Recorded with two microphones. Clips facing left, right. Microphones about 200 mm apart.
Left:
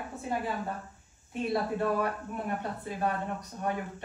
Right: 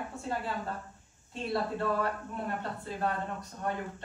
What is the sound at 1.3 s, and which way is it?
Speech, 15° left (ahead or behind).